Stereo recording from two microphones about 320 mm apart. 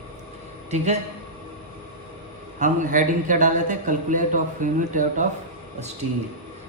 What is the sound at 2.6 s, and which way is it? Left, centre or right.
A man's voice, right.